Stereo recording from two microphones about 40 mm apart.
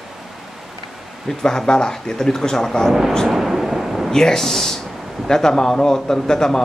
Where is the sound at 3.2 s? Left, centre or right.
Centre.